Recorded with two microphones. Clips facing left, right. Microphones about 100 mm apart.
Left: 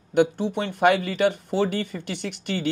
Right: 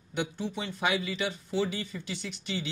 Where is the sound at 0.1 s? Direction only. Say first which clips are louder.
Left 12 dB; 60° left (ahead or behind).